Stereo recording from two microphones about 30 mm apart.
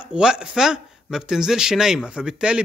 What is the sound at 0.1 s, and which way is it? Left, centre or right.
Speech, right.